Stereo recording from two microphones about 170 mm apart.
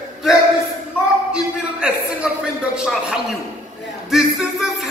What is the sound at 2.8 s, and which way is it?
Speech, 5° right (ahead or behind).